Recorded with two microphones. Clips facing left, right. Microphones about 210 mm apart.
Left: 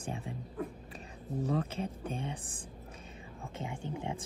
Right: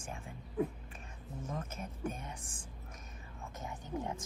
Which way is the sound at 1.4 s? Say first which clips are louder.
Left 9 dB; 35° left (ahead or behind).